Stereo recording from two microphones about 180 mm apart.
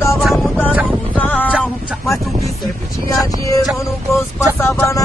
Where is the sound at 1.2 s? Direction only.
10° left (ahead or behind).